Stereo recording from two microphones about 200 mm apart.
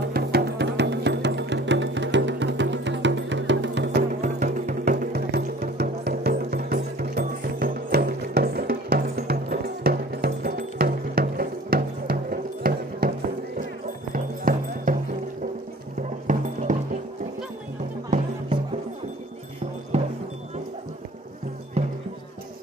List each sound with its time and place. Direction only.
0.0 s music: 50° right (ahead or behind)
4.1 s music: 35° right (ahead or behind)
4.9 s music: 55° right (ahead or behind)
14.1 s music: 45° right (ahead or behind)
16.3 s music: 40° right (ahead or behind)
19.9 s music: 35° right (ahead or behind)
21.8 s music: 30° right (ahead or behind)